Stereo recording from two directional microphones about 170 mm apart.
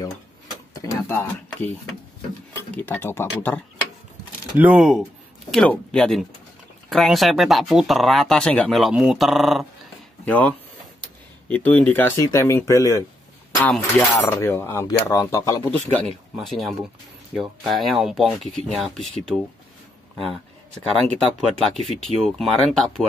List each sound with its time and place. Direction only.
0.0 s tick-tock: 20° left (ahead or behind)
2.5 s speech: 10° left (ahead or behind)
4.6 s speech: 5° right (ahead or behind); by 15.5 s 20° left (ahead or behind)
15.7 s speech: 5° left (ahead or behind)